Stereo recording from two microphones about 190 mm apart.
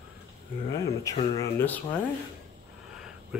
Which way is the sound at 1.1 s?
15° left (ahead or behind).